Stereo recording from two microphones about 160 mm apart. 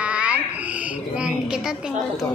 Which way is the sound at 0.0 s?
5° right (ahead or behind).